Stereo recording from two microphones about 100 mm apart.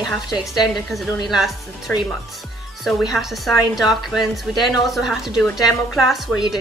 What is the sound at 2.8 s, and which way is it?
A woman's voice, centre (ahead or behind).